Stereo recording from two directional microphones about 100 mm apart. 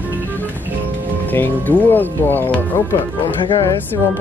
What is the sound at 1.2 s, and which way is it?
Speech, 20° left (ahead or behind).